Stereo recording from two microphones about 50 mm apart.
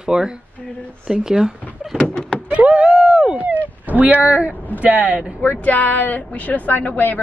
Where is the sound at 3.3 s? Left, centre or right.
Right.